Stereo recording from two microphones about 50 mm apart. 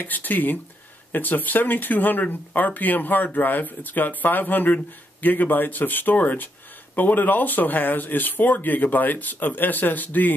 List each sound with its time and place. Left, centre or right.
0.0 s speech: left